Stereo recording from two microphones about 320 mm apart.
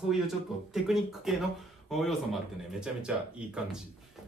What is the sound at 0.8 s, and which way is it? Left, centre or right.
A man's voice, centre.